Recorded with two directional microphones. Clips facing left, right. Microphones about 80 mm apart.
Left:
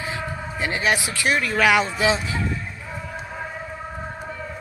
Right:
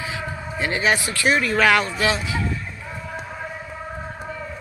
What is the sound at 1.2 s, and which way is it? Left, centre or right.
Speech, centre.